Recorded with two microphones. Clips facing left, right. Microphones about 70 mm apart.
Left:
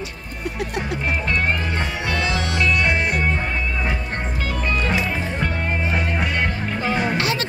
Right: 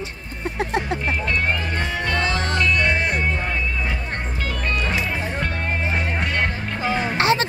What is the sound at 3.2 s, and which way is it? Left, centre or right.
Music, left.